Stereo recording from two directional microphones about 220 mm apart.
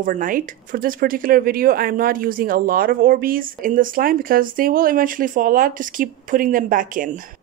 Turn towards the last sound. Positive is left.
turn(degrees=-40)  # may be behind; listen again after turning